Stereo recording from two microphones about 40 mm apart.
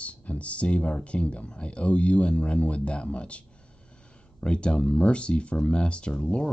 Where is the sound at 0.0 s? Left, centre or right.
Left; by 6.5 s centre.